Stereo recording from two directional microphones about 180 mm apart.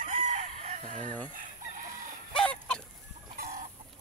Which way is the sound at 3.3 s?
50° right (ahead or behind).